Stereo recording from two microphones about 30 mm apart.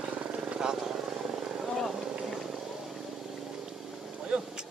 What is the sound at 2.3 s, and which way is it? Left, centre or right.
Wild animals, centre.